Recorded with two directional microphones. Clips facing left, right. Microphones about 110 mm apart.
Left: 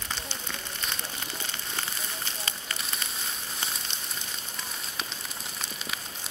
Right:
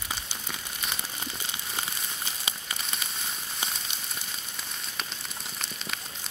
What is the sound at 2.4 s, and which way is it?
Fire, 15° right (ahead or behind).